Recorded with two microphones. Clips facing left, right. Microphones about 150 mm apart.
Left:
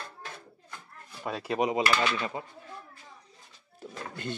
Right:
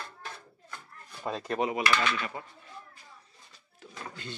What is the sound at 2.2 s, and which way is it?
Speech, 25° left (ahead or behind).